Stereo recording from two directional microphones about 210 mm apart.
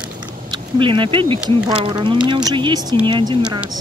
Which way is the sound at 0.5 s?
25° right (ahead or behind).